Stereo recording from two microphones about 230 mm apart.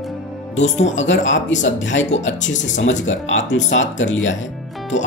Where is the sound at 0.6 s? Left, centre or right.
Left.